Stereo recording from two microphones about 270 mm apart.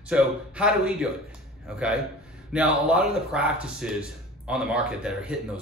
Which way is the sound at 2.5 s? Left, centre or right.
Centre.